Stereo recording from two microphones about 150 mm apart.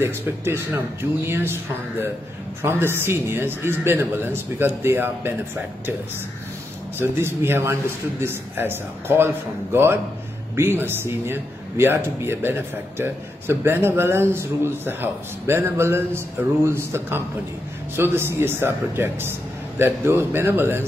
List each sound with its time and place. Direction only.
0.0 s speech: 15° right (ahead or behind)
7.0 s speech: 15° right (ahead or behind)